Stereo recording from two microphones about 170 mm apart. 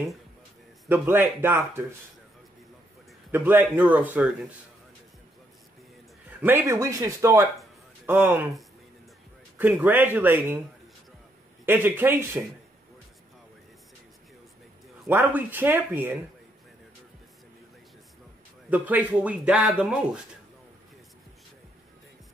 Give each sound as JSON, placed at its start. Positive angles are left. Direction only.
{"t": 0.8, "sound": "a man's voice", "side_deg": -10}
{"t": 3.3, "sound": "a man's voice", "side_deg": -10}
{"t": 6.4, "sound": "a man's voice", "side_deg": -15}
{"t": 9.6, "sound": "a man's voice", "side_deg": -10}
{"t": 11.6, "sound": "a man's voice", "side_deg": -15}
{"t": 15.0, "sound": "a man's voice", "side_deg": -10}
{"t": 18.7, "sound": "a man's voice", "side_deg": -10}